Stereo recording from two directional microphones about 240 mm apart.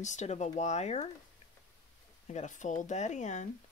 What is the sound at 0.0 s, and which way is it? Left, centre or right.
Speech, left.